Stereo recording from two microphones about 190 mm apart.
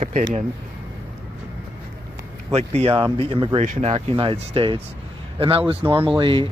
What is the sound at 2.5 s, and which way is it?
Speech, 35° right (ahead or behind).